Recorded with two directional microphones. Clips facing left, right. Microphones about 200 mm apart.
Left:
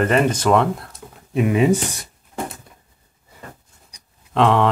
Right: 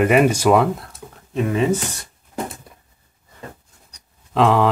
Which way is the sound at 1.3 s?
10° left (ahead or behind).